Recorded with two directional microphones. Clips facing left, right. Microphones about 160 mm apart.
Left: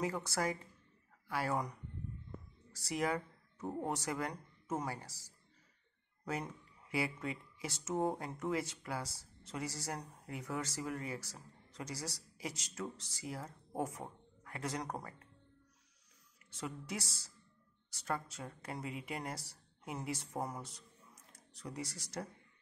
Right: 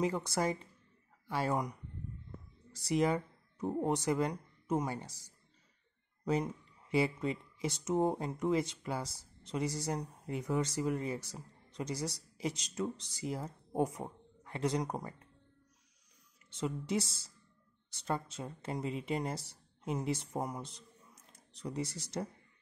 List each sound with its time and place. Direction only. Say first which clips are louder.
0.0 s speech: right 4 dB; 20° right (ahead or behind)
2.7 s speech: right 6 dB; 20° right (ahead or behind)
16.4 s speech: right 7 dB; 20° right (ahead or behind)